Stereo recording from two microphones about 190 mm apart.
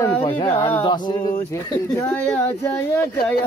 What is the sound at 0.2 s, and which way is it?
Speech, 30° left (ahead or behind).